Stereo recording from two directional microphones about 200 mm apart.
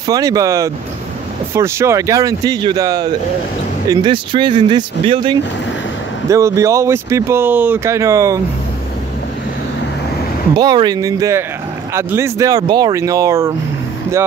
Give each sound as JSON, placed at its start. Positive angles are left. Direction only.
{"t": 0.0, "sound": "speech", "side_deg": -20}
{"t": 10.6, "sound": "speech", "side_deg": -20}